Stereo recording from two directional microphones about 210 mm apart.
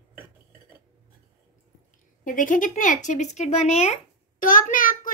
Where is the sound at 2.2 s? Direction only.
40° left (ahead or behind).